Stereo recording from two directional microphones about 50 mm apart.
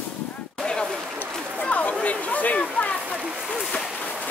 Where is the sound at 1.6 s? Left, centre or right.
Left.